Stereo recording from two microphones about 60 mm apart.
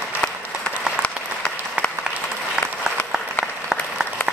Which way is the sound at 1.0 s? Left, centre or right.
Centre.